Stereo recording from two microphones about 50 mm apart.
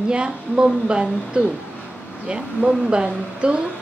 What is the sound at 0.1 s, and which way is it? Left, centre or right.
A woman's voice, right.